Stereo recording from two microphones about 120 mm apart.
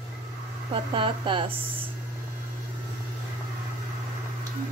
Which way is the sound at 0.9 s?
45° right (ahead or behind).